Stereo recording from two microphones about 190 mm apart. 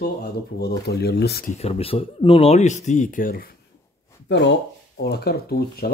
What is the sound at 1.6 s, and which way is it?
Speech, 30° left (ahead or behind).